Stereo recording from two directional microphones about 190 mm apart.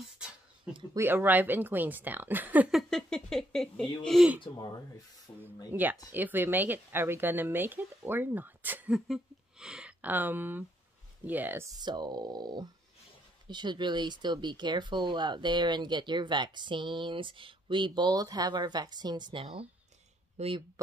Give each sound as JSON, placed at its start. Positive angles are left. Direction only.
{"t": 0.9, "sound": "speech", "side_deg": -10}
{"t": 5.3, "sound": "speech", "side_deg": 20}
{"t": 5.7, "sound": "speech", "side_deg": -10}
{"t": 11.8, "sound": "speech", "side_deg": -20}